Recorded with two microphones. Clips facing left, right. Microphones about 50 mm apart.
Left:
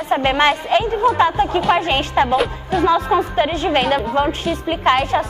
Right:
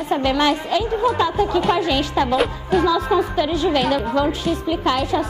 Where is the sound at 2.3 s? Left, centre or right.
Centre.